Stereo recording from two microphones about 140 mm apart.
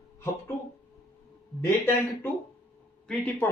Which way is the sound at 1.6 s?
15° left (ahead or behind).